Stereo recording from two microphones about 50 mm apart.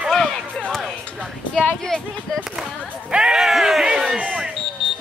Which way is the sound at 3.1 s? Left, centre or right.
Centre.